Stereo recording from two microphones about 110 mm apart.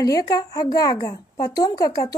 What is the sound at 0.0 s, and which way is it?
Speech, 30° left (ahead or behind).